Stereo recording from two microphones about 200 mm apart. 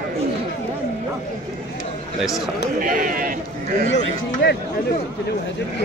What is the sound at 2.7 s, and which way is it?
Speech, 45° right (ahead or behind).